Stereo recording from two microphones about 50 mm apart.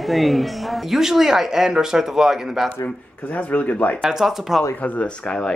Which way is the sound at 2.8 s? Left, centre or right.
Left.